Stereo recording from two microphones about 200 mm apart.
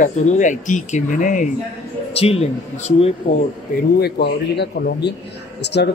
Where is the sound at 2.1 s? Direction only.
30° left (ahead or behind).